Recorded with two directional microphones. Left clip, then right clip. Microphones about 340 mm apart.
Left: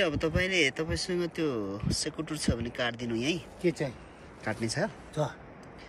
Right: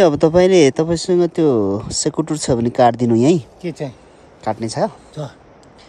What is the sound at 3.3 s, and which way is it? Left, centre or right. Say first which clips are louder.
Speech: right 8 dB; right.